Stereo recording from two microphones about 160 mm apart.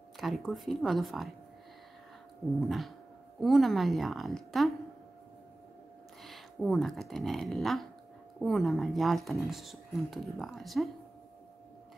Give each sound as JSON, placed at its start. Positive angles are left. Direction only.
{"t": 0.2, "sound": "speech", "side_deg": 0}
{"t": 3.3, "sound": "speech", "side_deg": 0}
{"t": 6.2, "sound": "speech", "side_deg": 0}